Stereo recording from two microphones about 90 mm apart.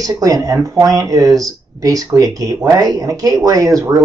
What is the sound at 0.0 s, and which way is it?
Speech, 40° right (ahead or behind).